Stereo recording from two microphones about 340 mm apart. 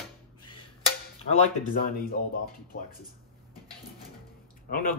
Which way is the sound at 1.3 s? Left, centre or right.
Left.